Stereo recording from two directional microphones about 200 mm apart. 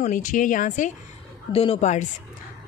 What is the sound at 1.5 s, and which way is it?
Speech, 30° left (ahead or behind).